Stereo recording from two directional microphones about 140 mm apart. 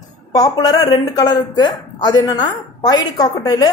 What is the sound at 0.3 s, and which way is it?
Speech, 25° left (ahead or behind).